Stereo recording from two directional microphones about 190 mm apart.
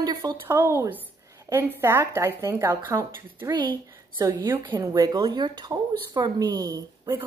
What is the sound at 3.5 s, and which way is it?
A woman's voice, 25° right (ahead or behind).